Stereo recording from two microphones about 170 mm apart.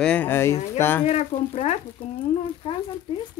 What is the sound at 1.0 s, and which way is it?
Speech, 40° left (ahead or behind).